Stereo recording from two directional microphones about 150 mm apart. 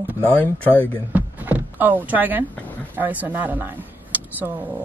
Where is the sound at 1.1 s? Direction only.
10° right (ahead or behind).